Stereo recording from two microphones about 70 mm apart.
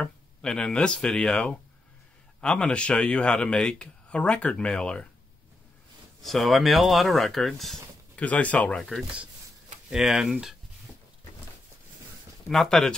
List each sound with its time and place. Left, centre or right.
0.0 s speech: centre
6.2 s speech: centre
8.2 s speech: left
8.7 s speech: centre
12.4 s speech: centre